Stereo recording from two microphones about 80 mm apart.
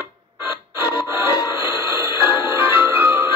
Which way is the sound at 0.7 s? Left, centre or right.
Right.